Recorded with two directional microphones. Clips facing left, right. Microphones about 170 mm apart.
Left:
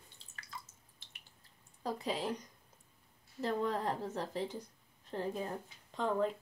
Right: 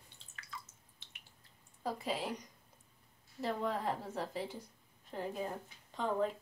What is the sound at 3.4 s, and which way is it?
A woman's voice, 10° right (ahead or behind).